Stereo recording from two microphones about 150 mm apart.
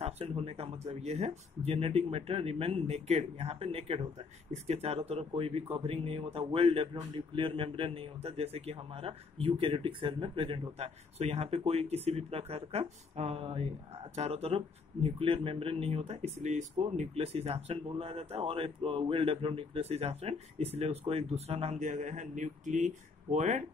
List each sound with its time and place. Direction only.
0.0 s speech: 40° right (ahead or behind)